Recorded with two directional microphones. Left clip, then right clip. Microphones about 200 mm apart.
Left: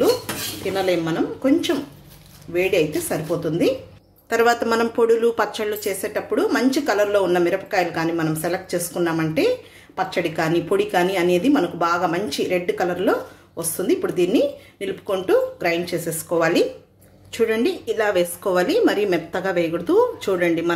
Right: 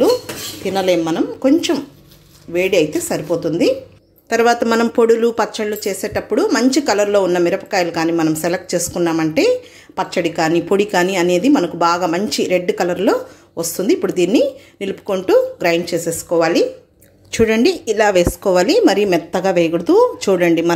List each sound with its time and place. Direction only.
0.7 s a woman's voice: 35° right (ahead or behind)
16.3 s a woman's voice: 20° right (ahead or behind)
17.3 s a woman's voice: 35° right (ahead or behind)